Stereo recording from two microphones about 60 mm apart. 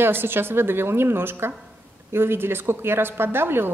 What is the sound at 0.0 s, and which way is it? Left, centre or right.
A woman's voice, right.